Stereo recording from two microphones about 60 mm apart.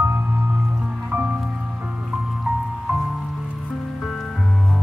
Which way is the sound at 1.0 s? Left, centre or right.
Right.